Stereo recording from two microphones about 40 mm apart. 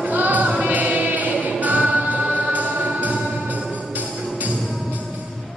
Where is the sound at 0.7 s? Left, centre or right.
Right.